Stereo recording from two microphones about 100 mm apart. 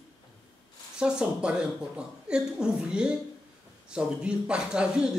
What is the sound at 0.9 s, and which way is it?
Speech, 10° right (ahead or behind).